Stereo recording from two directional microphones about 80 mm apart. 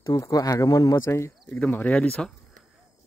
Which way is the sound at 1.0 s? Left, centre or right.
Left.